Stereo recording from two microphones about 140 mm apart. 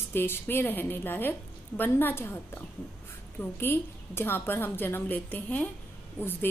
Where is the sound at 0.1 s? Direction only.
15° left (ahead or behind).